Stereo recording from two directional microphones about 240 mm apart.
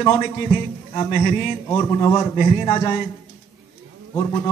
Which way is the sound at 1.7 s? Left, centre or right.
Centre.